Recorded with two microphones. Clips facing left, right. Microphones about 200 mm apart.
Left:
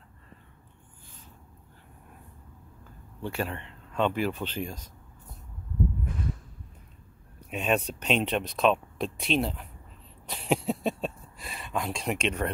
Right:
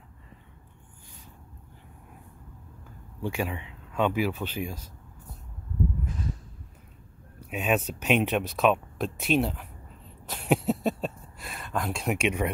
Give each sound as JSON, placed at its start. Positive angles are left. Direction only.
{"t": 3.2, "sound": "speech", "side_deg": -10}
{"t": 7.3, "sound": "speech", "side_deg": -5}
{"t": 10.5, "sound": "a sound", "side_deg": 0}